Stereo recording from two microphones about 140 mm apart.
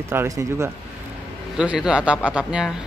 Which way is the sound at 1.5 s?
5° right (ahead or behind).